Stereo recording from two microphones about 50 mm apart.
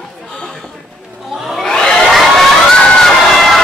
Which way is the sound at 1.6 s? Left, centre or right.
Centre.